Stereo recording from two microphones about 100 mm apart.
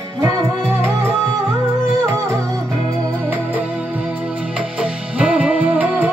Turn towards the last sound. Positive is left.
turn(degrees=-15)  # may be behind; listen again after turning